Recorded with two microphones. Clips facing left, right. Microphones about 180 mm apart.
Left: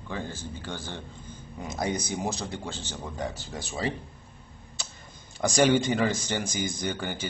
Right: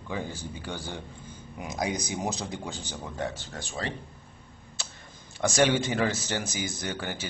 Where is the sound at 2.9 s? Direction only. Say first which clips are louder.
Right 1 dB; centre (ahead or behind).